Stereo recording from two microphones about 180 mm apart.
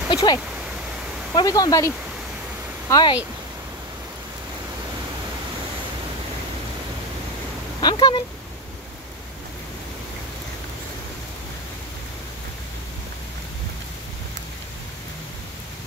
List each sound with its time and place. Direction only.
0.1 s speech: 25° left (ahead or behind)
7.8 s speech: 25° left (ahead or behind)